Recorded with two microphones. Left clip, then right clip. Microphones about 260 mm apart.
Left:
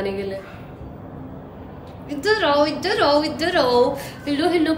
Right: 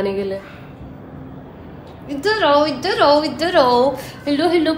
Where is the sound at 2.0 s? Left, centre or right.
Centre.